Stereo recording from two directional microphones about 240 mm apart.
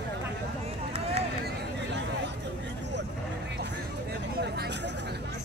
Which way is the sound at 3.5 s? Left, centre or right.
Right.